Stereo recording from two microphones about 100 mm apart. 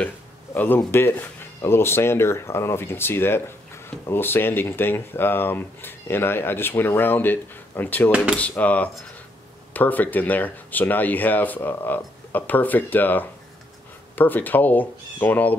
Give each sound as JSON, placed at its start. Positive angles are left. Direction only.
{"t": 0.6, "sound": "speech", "side_deg": 20}